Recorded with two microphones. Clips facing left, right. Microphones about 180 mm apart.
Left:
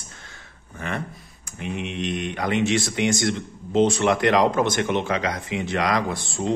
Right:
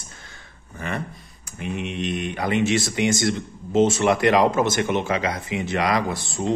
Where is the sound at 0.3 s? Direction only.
Centre (ahead or behind).